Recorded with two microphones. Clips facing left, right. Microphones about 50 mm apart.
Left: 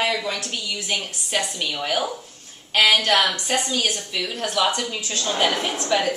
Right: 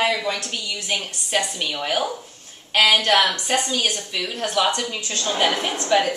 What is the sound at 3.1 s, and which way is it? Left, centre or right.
A woman's voice, centre.